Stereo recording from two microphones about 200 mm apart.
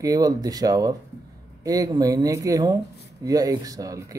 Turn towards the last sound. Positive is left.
turn(degrees=-15)  # may be behind; listen again after turning